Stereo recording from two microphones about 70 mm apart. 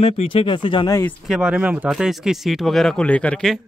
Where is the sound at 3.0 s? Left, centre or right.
Centre.